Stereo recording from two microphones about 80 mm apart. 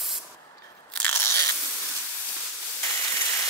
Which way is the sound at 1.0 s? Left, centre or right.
Left.